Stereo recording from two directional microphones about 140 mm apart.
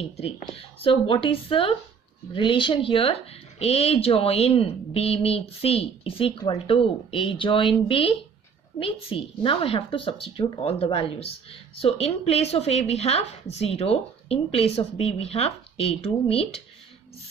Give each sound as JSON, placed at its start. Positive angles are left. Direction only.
{"t": 0.0, "sound": "a woman's voice", "side_deg": 45}